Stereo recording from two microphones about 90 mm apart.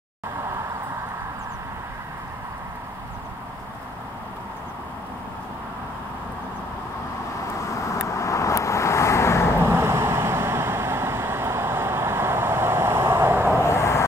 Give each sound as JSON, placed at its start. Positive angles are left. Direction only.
{"t": 7.6, "sound": "vehicle", "side_deg": 35}
{"t": 9.6, "sound": "vehicle", "side_deg": -25}
{"t": 13.6, "sound": "vehicle", "side_deg": 30}